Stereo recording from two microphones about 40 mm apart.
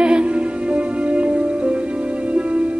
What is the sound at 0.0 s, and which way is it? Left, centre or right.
Music, right.